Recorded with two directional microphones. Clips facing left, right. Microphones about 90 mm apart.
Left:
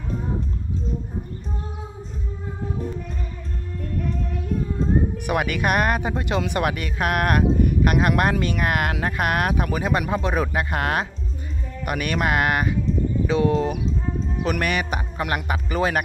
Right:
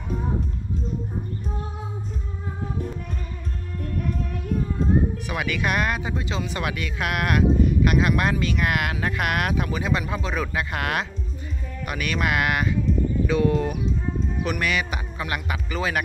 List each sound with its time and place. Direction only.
5.2 s speech: 55° left (ahead or behind)
6.7 s speech: 40° left (ahead or behind)
13.3 s speech: 25° left (ahead or behind)
14.5 s speech: 45° left (ahead or behind)